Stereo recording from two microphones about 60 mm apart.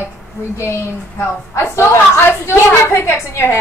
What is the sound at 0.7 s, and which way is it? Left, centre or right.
A woman's voice, left.